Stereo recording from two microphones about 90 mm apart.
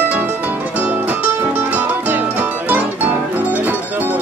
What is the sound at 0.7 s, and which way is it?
Music, 15° right (ahead or behind).